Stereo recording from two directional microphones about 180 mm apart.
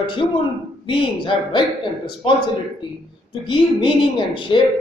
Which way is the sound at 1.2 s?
25° left (ahead or behind).